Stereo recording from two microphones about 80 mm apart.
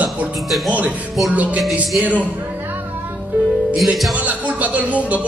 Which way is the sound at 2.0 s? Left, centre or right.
Centre.